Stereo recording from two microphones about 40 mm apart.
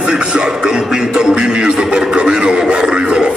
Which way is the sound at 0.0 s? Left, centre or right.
Right.